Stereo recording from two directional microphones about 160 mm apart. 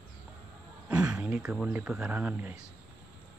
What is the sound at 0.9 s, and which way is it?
Speech, 5° right (ahead or behind).